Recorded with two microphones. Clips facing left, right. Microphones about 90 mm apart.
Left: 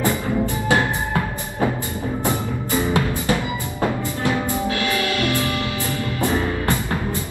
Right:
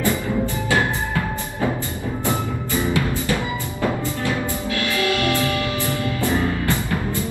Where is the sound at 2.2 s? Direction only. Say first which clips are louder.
Right 2 dB; 20° left (ahead or behind).